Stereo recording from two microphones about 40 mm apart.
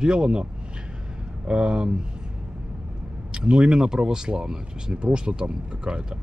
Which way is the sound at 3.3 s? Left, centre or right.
Right.